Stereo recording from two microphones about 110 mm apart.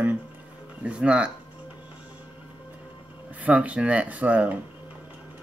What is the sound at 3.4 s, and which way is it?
Speech, 10° right (ahead or behind).